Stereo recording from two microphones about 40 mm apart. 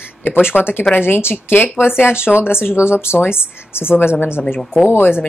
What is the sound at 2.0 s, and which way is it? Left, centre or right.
Speech, left.